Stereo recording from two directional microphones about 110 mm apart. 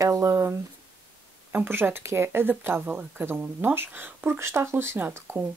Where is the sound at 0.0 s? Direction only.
30° right (ahead or behind).